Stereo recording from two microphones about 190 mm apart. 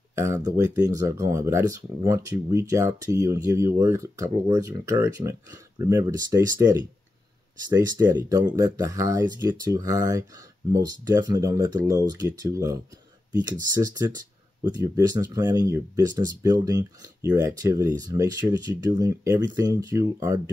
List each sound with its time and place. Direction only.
0.2 s speech: 15° right (ahead or behind)